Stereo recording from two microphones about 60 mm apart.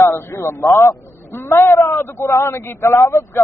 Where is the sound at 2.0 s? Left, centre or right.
Left.